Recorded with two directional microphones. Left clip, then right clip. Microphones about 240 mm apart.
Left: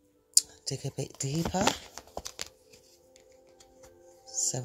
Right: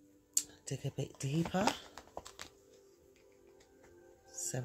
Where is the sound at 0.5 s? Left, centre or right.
Centre.